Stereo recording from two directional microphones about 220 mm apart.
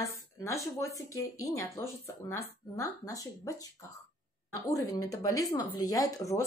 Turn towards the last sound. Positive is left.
turn(degrees=15)  # may be behind; listen again after turning